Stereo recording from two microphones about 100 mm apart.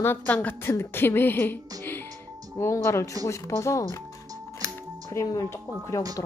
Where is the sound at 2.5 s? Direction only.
25° left (ahead or behind).